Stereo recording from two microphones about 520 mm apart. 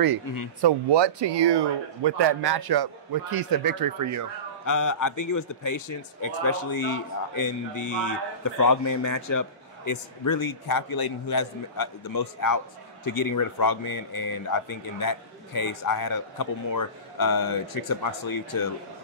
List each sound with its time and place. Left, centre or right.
0.6 s a man's voice: right
4.6 s speech: left